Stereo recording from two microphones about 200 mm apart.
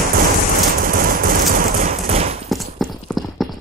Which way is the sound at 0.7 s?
45° right (ahead or behind).